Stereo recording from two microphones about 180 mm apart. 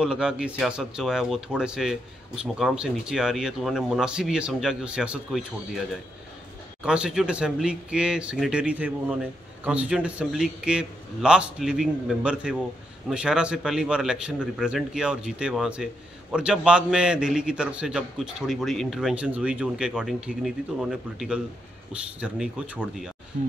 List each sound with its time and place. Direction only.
0.0 s speech: 5° right (ahead or behind)
6.8 s speech: 5° right (ahead or behind)
23.3 s speech: 50° right (ahead or behind)